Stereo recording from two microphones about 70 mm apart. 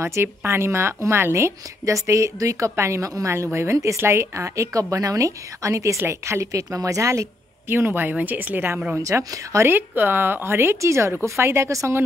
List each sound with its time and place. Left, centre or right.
0.0 s speech: right
4.9 s speech: right
9.0 s speech: right
9.7 s speech: right